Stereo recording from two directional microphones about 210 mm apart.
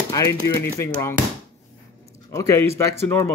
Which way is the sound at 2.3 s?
15° left (ahead or behind).